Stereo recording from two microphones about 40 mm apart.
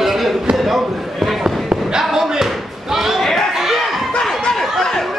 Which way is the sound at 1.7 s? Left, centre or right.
Centre.